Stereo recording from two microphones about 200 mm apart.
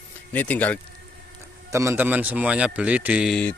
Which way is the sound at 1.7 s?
10° right (ahead or behind).